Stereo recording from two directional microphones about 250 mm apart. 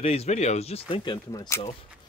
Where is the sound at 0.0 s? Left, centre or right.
Left.